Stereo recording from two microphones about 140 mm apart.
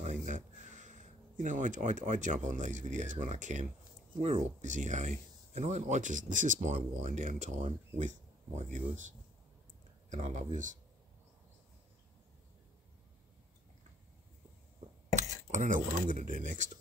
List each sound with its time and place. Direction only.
0.0 s speech: 60° right (ahead or behind)
15.1 s speech: 60° right (ahead or behind)